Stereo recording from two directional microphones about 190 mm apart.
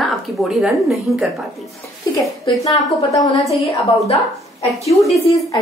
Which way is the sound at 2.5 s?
25° left (ahead or behind).